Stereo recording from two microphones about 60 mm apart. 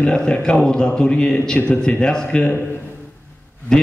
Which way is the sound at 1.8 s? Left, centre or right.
Centre.